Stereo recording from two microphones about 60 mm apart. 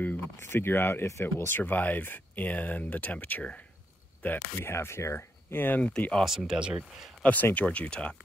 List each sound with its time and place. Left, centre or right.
0.4 s speech: left
1.2 s speech: left
4.6 s speech: left
5.8 s speech: centre
6.2 s speech: centre
7.5 s speech: left